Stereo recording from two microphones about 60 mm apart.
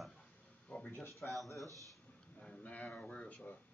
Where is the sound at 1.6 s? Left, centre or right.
Right.